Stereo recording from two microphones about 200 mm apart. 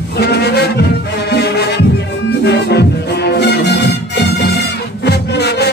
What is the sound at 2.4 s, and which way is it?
Music, 55° left (ahead or behind).